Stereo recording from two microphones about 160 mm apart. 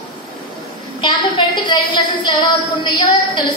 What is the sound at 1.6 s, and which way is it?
A woman's voice, 30° left (ahead or behind).